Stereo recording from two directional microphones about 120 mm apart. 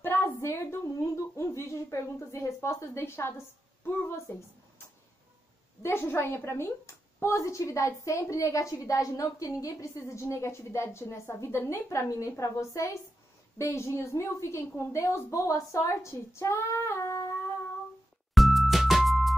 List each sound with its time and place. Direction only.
0.0 s a sound: 20° left (ahead or behind)
4.3 s a woman's voice: 20° left (ahead or behind)
5.8 s a woman's voice: 20° left (ahead or behind)
18.3 s music: centre (ahead or behind)